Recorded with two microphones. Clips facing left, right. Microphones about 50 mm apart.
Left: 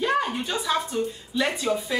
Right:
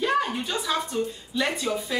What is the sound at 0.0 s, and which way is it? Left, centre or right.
Speech, centre.